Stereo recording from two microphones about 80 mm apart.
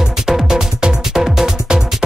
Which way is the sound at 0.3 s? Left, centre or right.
Centre.